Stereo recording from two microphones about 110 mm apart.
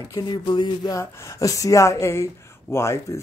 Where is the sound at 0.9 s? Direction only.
25° left (ahead or behind).